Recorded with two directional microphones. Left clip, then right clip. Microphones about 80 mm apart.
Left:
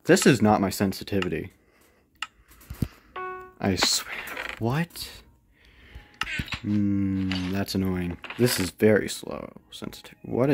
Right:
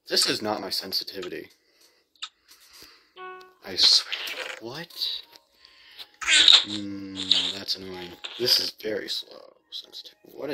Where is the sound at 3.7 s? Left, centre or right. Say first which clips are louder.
Right 5 dB; left.